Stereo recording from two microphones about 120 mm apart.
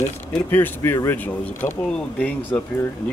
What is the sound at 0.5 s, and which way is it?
Speech, 20° left (ahead or behind).